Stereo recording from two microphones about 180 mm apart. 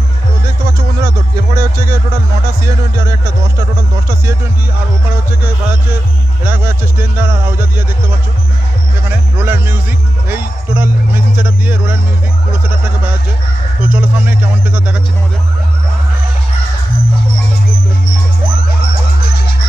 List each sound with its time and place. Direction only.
1.0 s speech: 20° right (ahead or behind)
6.4 s speech: 10° right (ahead or behind)
9.1 s speech: 10° right (ahead or behind)
13.8 s speech: 10° right (ahead or behind)